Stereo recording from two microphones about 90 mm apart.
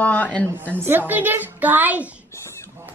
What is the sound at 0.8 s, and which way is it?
A child's voice, 25° right (ahead or behind).